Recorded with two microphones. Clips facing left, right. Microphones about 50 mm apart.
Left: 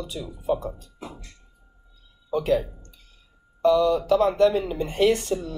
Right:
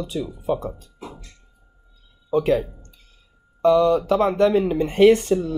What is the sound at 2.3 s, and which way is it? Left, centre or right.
Speech, right.